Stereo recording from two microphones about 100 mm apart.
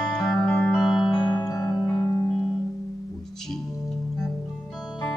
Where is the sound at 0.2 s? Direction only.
30° left (ahead or behind).